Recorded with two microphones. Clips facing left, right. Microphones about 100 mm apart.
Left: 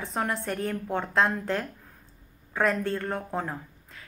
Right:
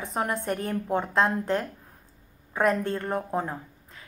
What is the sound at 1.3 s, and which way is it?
A woman's voice, 30° right (ahead or behind).